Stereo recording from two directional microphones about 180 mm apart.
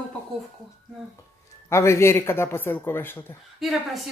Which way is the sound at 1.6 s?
15° left (ahead or behind).